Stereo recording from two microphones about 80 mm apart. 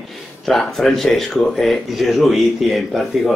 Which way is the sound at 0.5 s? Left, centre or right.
Centre.